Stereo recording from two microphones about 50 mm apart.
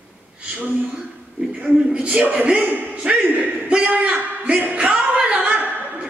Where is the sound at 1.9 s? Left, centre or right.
Right.